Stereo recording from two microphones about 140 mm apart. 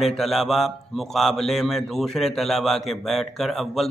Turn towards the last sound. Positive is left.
turn(degrees=0)  # may be behind; listen again after turning